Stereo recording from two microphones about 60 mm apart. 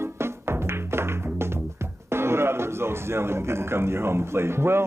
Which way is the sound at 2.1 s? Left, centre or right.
Right.